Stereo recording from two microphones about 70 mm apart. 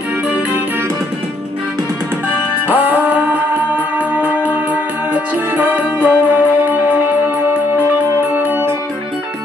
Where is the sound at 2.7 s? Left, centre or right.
Right.